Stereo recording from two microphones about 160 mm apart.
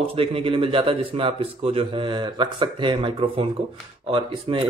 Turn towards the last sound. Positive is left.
turn(degrees=-35)  # may be behind; listen again after turning